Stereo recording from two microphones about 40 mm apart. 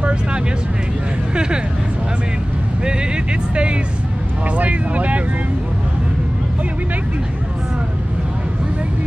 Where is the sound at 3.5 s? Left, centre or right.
Right.